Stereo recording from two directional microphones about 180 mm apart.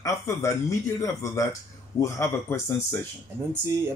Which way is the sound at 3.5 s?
15° right (ahead or behind).